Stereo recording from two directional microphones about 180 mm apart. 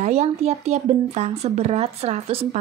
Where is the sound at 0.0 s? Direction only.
35° right (ahead or behind).